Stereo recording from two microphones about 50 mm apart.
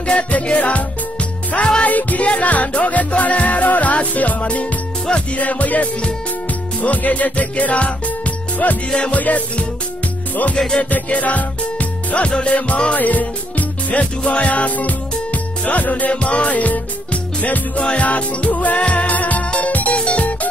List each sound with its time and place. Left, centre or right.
0.0 s music: left
1.9 s music: left
8.9 s music: centre
9.2 s music: left
11.1 s music: left